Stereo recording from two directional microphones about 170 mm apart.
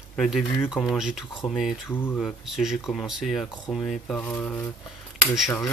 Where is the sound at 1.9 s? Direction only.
15° left (ahead or behind).